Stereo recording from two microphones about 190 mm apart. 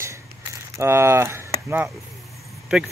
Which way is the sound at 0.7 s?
15° right (ahead or behind).